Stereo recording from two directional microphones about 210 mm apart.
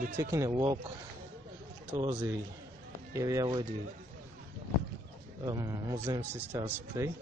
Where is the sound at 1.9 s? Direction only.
20° right (ahead or behind).